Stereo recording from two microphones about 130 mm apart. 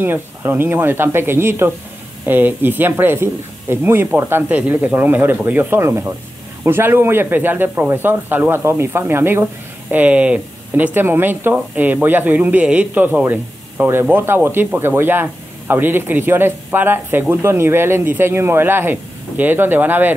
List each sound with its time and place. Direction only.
0.0 s speech: 15° right (ahead or behind)